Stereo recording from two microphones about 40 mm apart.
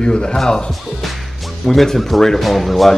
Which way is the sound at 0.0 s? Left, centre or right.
Left.